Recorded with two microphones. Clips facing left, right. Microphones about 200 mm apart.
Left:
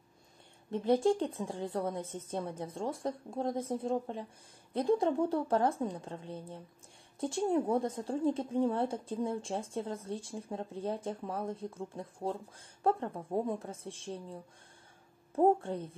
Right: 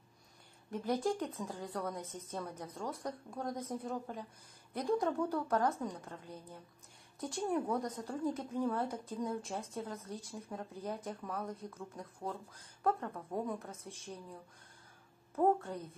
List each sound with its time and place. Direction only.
0.7 s a woman's voice: 25° left (ahead or behind)
15.3 s a woman's voice: 25° left (ahead or behind)